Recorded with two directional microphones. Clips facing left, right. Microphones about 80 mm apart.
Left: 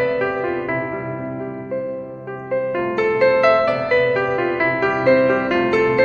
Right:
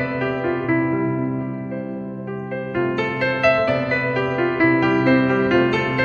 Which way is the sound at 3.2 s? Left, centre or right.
Left.